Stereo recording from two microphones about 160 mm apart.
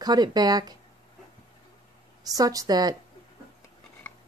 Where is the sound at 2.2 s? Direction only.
20° right (ahead or behind).